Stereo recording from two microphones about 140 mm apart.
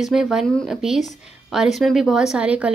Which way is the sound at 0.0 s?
5° right (ahead or behind).